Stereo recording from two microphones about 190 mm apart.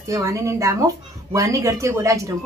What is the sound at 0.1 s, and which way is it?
A woman's voice, 15° right (ahead or behind).